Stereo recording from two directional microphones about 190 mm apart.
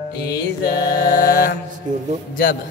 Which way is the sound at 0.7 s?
20° left (ahead or behind).